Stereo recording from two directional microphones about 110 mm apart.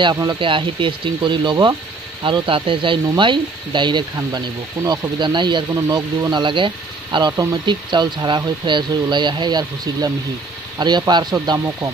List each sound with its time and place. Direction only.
0.0 s speech: 35° right (ahead or behind)
0.4 s speech: 50° right (ahead or behind)
5.7 s speech: 30° right (ahead or behind)